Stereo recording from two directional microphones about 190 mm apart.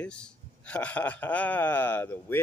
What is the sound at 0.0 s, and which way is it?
A man's voice, 5° left (ahead or behind).